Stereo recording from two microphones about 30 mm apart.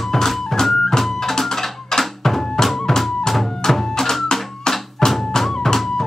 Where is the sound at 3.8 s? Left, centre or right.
Centre.